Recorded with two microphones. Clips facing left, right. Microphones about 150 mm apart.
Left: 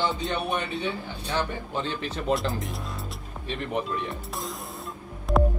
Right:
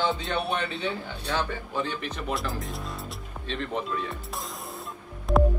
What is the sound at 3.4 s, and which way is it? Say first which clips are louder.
Speech: left 1 dB; 15° left (ahead or behind).